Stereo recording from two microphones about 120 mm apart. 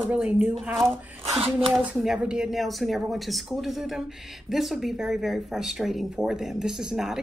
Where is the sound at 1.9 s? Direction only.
5° right (ahead or behind).